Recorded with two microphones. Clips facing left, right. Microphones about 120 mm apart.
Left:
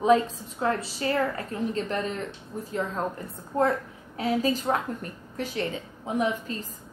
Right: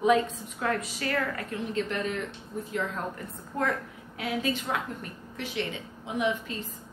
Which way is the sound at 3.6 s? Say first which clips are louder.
Left 5 dB; 35° left (ahead or behind).